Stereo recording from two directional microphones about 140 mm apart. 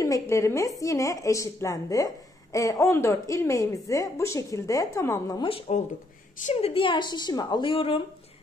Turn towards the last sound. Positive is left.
turn(degrees=40)  # may be behind; listen again after turning